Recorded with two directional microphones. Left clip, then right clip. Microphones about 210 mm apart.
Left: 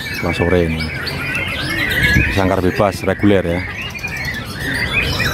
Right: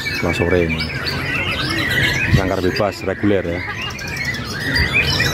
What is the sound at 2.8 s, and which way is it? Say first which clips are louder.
Speech: left 3 dB; 20° left (ahead or behind).